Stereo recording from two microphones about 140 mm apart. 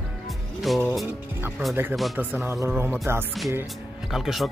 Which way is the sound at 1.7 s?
15° right (ahead or behind).